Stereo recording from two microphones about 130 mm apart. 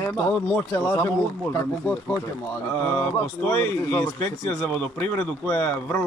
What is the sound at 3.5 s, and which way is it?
Speech, 15° left (ahead or behind).